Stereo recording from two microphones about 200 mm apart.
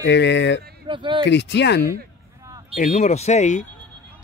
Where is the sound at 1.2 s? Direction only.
60° left (ahead or behind).